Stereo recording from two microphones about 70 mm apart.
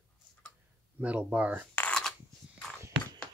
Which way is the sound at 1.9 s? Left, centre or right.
Centre.